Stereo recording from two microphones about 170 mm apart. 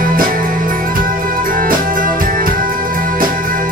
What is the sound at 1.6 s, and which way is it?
Music, 55° right (ahead or behind).